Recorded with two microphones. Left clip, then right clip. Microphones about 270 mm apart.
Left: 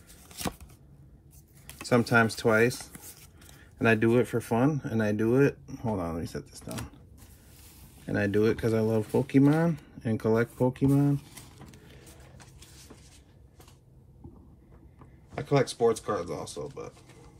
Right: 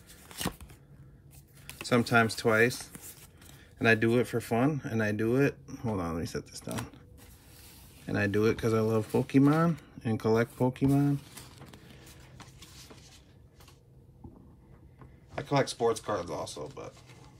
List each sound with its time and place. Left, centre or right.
0.3 s shuffling cards: centre
1.7 s speech: centre
8.0 s speech: centre
15.3 s speech: centre